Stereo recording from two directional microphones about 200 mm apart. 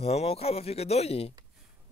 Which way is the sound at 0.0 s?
30° left (ahead or behind).